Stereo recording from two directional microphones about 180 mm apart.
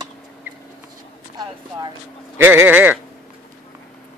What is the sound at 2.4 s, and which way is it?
Speech, 10° right (ahead or behind).